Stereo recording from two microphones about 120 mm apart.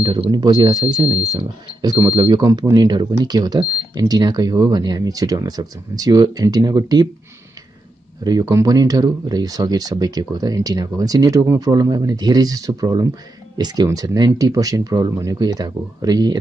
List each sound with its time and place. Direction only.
0.0 s speech: 40° right (ahead or behind)
8.2 s speech: 30° right (ahead or behind)